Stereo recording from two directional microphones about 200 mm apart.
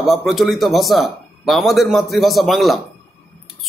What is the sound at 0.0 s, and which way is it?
A man's voice, centre (ahead or behind).